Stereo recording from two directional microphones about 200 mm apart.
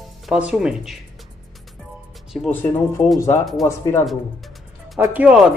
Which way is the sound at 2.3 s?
5° left (ahead or behind).